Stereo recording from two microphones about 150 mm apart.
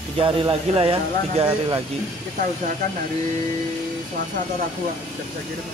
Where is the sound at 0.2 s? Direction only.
35° right (ahead or behind).